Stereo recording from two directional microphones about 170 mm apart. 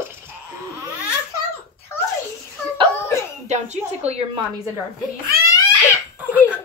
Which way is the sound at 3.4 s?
40° right (ahead or behind).